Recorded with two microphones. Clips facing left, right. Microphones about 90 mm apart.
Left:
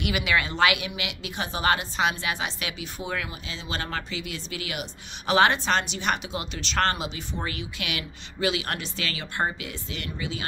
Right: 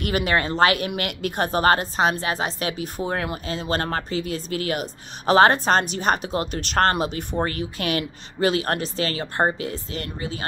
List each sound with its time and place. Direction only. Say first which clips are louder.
0.0 s speech: right 3 dB; 45° right (ahead or behind)